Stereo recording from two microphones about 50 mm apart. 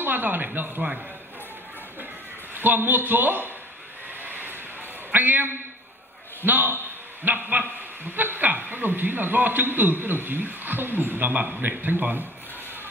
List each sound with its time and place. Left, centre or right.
0.0 s a man's voice: right
2.5 s a man's voice: right
4.2 s a sound: right
5.1 s a man's voice: right